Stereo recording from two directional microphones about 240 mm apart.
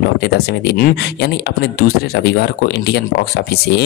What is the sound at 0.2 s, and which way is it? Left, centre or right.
Speech, left.